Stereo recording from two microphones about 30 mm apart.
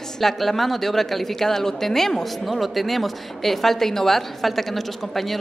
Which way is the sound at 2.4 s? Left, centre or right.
Centre.